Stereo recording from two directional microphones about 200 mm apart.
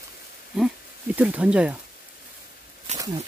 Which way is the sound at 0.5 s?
5° right (ahead or behind).